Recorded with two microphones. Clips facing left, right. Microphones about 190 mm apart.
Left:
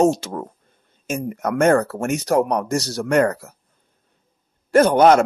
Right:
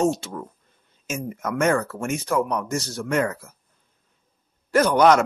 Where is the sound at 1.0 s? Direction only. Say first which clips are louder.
Left 5 dB; 65° left (ahead or behind).